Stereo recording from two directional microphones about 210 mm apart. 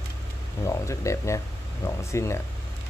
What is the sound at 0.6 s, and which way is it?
Speech, 15° left (ahead or behind).